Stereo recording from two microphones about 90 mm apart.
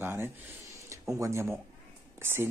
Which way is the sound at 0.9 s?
35° right (ahead or behind).